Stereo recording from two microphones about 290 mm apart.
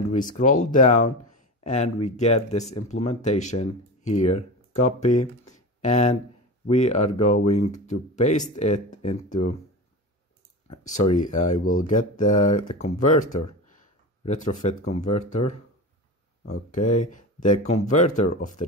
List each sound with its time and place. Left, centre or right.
0.1 s speech: left
10.7 s speech: left
16.7 s speech: left